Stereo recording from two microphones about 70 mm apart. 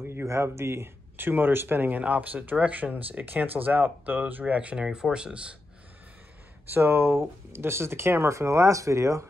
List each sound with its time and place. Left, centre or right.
0.0 s speech: right; by 5.6 s centre
6.7 s speech: right